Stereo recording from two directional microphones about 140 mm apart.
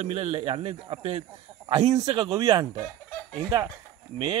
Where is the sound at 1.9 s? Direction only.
30° right (ahead or behind).